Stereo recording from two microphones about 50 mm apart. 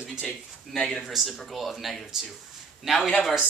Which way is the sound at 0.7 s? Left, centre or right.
Centre.